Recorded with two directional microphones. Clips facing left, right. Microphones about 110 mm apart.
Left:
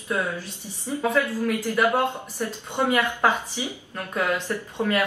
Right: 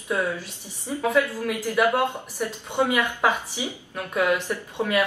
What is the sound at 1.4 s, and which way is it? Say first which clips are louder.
Speech: even; 15° right (ahead or behind).